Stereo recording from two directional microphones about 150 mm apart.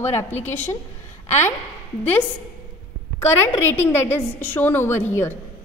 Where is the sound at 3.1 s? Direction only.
15° left (ahead or behind).